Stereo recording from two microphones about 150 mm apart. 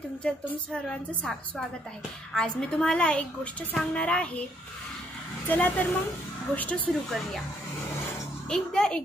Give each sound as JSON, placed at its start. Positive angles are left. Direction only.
{"t": 0.2, "sound": "a woman's voice", "side_deg": 5}
{"t": 2.3, "sound": "speech", "side_deg": 5}
{"t": 5.5, "sound": "speech", "side_deg": 10}
{"t": 8.5, "sound": "a woman's voice", "side_deg": 5}